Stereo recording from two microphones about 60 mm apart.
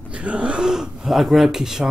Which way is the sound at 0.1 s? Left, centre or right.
Right.